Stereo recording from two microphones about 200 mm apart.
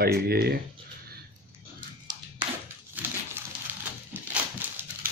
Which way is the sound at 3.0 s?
5° right (ahead or behind).